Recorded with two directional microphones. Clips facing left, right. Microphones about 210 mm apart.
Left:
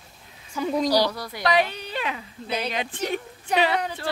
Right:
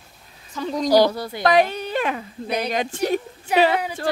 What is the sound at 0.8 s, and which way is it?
Speech, 50° right (ahead or behind).